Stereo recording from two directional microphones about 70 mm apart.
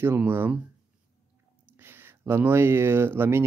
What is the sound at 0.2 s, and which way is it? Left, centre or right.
Speech, right.